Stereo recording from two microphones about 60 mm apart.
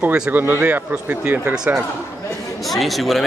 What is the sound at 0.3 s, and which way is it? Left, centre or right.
A man's voice, right.